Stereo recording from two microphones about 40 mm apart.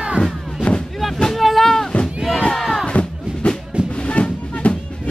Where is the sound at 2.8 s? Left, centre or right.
Left.